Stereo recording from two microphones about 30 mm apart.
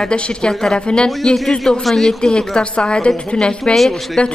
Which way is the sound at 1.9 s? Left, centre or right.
Centre.